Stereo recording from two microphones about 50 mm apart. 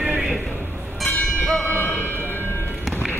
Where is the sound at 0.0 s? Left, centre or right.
Right.